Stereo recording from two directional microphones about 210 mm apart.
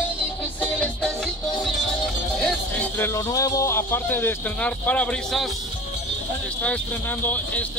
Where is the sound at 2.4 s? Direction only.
10° left (ahead or behind).